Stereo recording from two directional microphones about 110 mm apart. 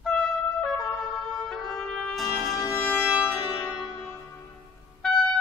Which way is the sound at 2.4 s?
Centre (ahead or behind).